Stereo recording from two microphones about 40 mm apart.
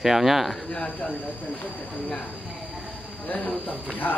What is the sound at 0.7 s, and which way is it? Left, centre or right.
Speech, left.